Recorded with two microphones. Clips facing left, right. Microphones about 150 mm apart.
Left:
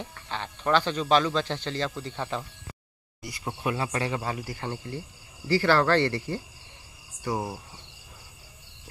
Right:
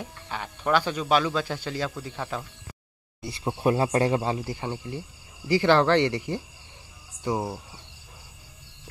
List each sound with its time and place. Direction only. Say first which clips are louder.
0.0 s speech: even; 10° right (ahead or behind)
3.2 s speech: right 5 dB; 25° right (ahead or behind)
4.2 s speech: right 4 dB; 25° right (ahead or behind)